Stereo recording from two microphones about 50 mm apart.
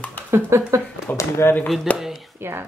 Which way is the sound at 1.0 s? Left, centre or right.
Left.